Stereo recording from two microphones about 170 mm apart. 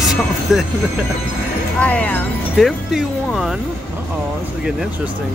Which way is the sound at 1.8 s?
10° left (ahead or behind).